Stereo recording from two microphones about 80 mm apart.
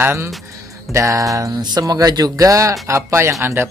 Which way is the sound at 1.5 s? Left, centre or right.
Right.